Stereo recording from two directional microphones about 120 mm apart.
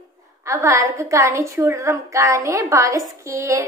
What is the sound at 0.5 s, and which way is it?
A woman's voice, 25° right (ahead or behind).